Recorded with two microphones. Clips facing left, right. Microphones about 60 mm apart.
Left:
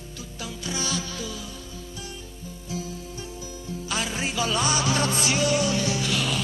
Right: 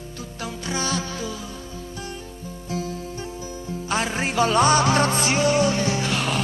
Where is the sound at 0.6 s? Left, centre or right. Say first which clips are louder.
Right 4 dB; right.